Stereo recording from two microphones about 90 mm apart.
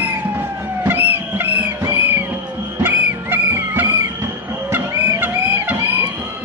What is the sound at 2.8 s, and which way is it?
Music, 20° right (ahead or behind).